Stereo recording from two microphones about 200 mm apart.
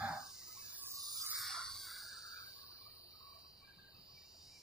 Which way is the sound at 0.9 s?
20° right (ahead or behind).